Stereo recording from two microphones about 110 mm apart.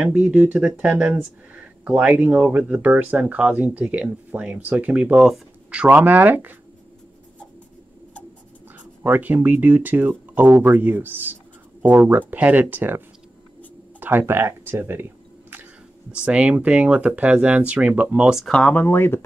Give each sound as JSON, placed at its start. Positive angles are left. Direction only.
{"t": 0.0, "sound": "speech", "side_deg": -15}
{"t": 9.0, "sound": "speech", "side_deg": -15}
{"t": 16.2, "sound": "speech", "side_deg": -10}
{"t": 18.4, "sound": "speech", "side_deg": 10}